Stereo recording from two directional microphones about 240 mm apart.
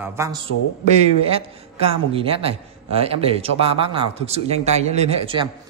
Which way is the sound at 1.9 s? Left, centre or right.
Right.